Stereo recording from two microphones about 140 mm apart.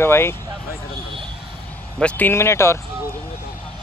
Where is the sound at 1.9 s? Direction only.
10° left (ahead or behind).